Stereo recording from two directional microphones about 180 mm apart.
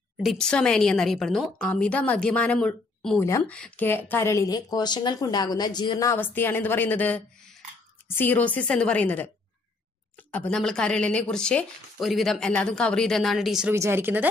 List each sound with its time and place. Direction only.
0.2 s speech: centre (ahead or behind)
3.3 s speech: 15° left (ahead or behind); by 13.7 s 5° right (ahead or behind)
13.7 s speech: 15° right (ahead or behind)